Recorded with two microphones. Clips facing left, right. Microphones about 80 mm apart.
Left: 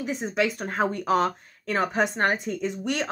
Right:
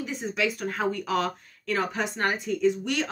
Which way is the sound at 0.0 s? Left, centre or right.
Left.